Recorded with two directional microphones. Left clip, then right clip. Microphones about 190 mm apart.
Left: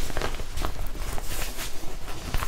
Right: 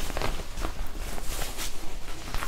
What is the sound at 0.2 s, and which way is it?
Walk, 5° right (ahead or behind).